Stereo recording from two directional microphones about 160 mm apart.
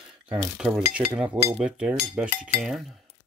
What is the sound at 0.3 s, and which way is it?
Speech, 5° right (ahead or behind).